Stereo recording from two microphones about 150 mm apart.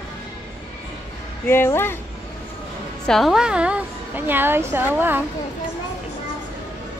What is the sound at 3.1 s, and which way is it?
A woman's voice, centre (ahead or behind).